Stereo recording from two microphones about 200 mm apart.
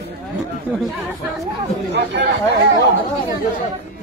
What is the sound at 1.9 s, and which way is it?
Speech, 60° right (ahead or behind).